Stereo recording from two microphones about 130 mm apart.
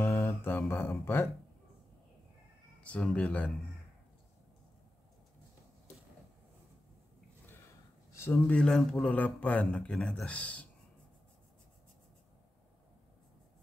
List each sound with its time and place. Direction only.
0.0 s a sound: 15° left (ahead or behind)
2.8 s speech: 10° left (ahead or behind)
7.4 s speech: 20° left (ahead or behind)